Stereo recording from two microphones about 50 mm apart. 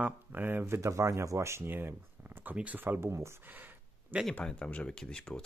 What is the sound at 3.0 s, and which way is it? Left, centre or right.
Speech, right.